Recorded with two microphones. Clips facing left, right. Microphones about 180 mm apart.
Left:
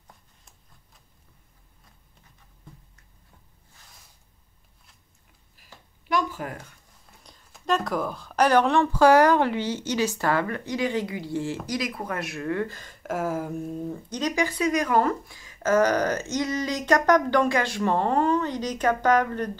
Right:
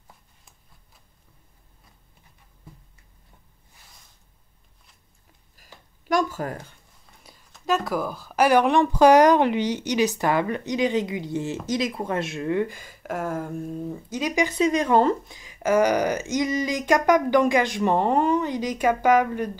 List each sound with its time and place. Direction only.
5.6 s a sound: 45° right (ahead or behind)
7.5 s speech: 5° right (ahead or behind)
14.3 s speech: 20° right (ahead or behind)